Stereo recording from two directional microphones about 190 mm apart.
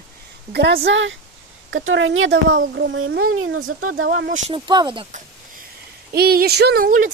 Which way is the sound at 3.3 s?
90° right.